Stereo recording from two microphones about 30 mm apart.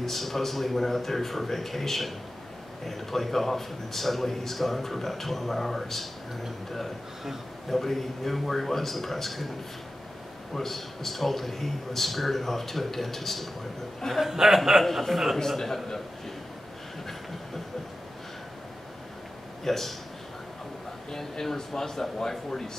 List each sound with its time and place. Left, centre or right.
0.0 s a man's voice: centre
10.5 s a man's voice: centre
14.2 s speech: centre
15.3 s a man's voice: centre
19.6 s speech: centre
21.1 s a man's voice: centre